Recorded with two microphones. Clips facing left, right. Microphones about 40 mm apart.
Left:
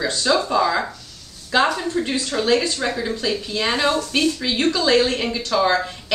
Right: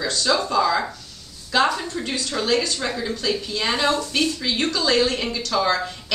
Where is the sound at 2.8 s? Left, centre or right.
Centre.